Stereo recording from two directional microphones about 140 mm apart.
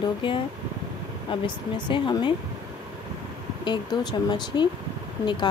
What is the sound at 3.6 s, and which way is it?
Speech, 35° left (ahead or behind).